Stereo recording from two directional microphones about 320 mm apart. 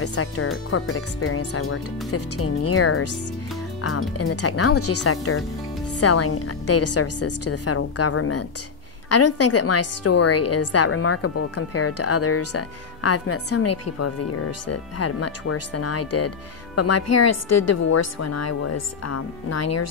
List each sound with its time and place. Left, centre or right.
0.0 s a woman's voice: left